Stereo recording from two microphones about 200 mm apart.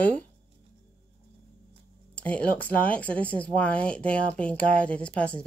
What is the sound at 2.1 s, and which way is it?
Speech, 5° left (ahead or behind).